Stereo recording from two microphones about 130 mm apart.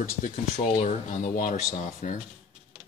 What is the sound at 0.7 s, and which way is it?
Speech, 70° left (ahead or behind).